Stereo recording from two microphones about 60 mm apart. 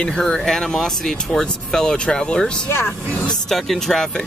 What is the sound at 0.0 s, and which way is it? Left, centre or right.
Speech, centre.